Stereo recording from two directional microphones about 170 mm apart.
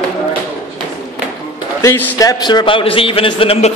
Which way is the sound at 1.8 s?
15° left (ahead or behind).